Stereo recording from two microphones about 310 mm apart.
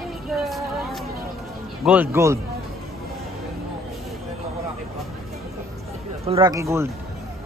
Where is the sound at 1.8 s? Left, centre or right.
Centre.